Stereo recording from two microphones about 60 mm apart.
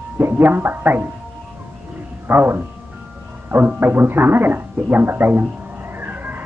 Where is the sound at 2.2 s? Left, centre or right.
Right.